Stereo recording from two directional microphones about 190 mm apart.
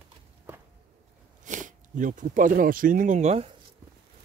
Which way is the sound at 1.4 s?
40° right (ahead or behind).